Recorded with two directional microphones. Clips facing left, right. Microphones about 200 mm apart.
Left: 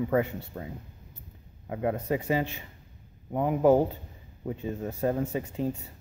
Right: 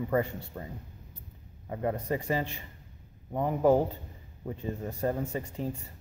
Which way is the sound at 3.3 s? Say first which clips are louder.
Left 2 dB; 15° left (ahead or behind).